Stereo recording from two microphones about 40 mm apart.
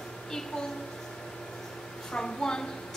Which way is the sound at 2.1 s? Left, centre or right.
Centre.